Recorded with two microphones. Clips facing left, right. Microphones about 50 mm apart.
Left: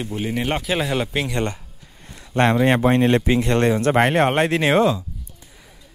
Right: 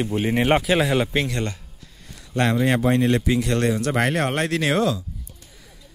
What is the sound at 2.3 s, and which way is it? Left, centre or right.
Speech, left.